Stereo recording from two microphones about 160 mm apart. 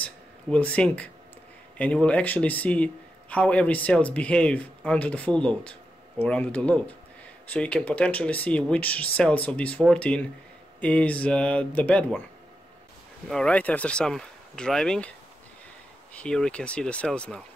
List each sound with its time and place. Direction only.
0.0 s a sound: 10° left (ahead or behind)
1.8 s a man's voice: 5° left (ahead or behind)
13.3 s a man's voice: 5° left (ahead or behind)